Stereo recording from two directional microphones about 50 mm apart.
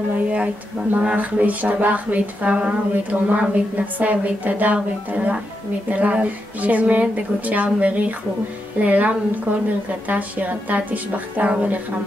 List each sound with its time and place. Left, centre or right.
0.9 s a woman's voice: right